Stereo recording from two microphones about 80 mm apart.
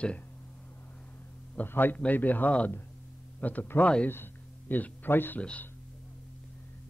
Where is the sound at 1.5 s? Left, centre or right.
Left.